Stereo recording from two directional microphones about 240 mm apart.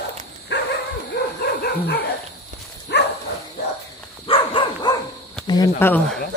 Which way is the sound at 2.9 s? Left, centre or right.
Left.